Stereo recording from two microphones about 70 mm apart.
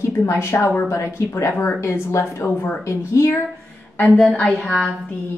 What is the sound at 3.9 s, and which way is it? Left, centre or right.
Speech, centre.